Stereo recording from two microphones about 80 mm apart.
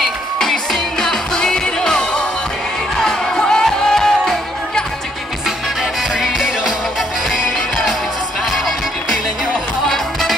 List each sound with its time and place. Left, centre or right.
0.0 s music: centre
6.1 s music: centre
8.5 s music: centre